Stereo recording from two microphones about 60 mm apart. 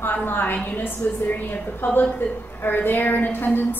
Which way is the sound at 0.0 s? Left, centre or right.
Left.